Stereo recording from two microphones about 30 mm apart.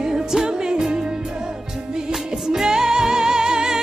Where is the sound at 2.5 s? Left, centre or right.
Centre.